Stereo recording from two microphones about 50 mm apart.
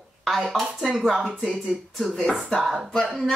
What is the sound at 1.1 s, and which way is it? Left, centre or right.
Speech, centre.